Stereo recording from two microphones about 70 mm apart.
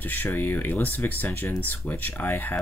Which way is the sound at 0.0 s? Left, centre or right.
Left.